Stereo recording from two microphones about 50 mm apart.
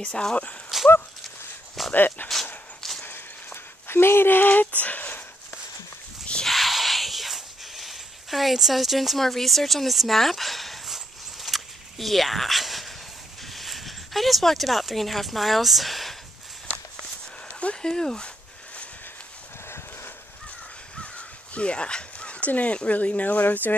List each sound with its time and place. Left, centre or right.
0.0 s speech: centre
0.7 s walk: centre
2.0 s speech: left
2.8 s a sound: centre
3.8 s speech: left
6.4 s a sound: centre
17.5 s a sound: left
17.8 s speech: centre
21.0 s speech: left